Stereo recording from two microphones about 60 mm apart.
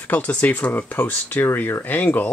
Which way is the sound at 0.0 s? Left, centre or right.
Left.